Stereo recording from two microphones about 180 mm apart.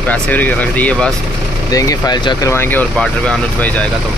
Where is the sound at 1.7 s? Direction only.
20° left (ahead or behind).